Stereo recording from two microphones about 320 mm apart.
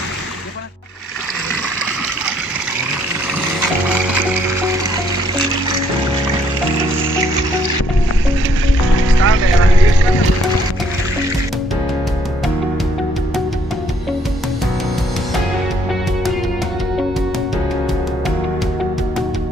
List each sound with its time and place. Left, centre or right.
8.9 s music: right